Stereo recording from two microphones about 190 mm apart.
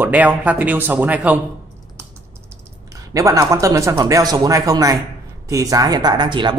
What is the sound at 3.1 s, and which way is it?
Speech, 15° right (ahead or behind).